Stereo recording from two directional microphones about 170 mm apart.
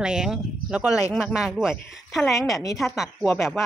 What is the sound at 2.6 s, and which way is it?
Speech, 20° left (ahead or behind).